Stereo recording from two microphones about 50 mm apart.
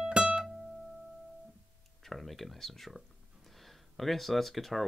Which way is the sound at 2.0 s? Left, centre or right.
Centre.